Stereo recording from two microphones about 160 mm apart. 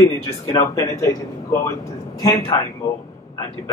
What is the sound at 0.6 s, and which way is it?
Speech, 20° left (ahead or behind).